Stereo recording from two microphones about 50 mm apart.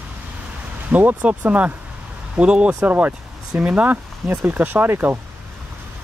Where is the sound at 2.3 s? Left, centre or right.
Right.